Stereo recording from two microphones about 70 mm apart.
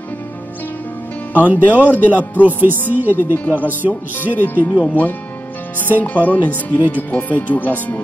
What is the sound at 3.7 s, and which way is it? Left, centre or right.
Music, right.